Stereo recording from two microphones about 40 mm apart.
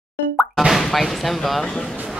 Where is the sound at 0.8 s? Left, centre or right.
Centre.